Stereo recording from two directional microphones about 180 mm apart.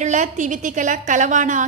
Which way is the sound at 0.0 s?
45° right (ahead or behind).